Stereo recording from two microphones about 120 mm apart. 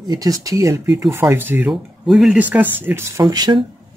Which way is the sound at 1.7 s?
5° right (ahead or behind).